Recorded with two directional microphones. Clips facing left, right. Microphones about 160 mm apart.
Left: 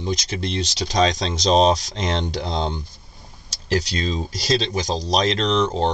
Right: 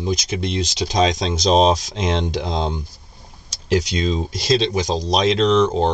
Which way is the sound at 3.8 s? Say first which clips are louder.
Right 4 dB; centre (ahead or behind).